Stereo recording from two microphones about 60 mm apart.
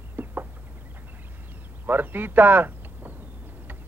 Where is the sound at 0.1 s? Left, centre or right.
Right.